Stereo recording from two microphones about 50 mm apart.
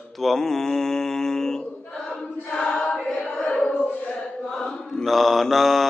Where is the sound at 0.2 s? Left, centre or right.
Centre.